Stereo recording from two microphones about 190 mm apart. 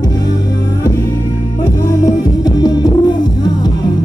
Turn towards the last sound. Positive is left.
turn(degrees=20)  # may be behind; listen again after turning